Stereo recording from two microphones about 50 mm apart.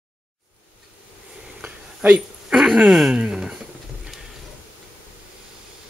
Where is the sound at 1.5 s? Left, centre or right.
Right.